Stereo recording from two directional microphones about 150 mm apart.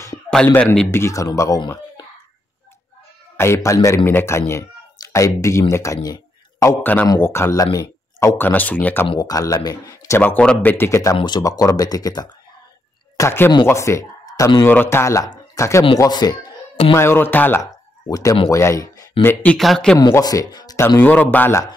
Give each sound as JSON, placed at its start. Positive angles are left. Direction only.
{"t": 0.5, "sound": "speech", "side_deg": 10}
{"t": 3.3, "sound": "speech", "side_deg": 20}
{"t": 9.1, "sound": "speech", "side_deg": 25}
{"t": 11.1, "sound": "speech", "side_deg": 30}
{"t": 13.2, "sound": "speech", "side_deg": 15}
{"t": 16.9, "sound": "speech", "side_deg": 15}
{"t": 18.0, "sound": "speech", "side_deg": 25}
{"t": 19.2, "sound": "speech", "side_deg": 5}
{"t": 20.1, "sound": "speech", "side_deg": 25}